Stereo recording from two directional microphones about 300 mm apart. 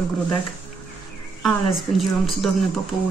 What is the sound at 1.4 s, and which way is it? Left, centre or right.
Speech, centre.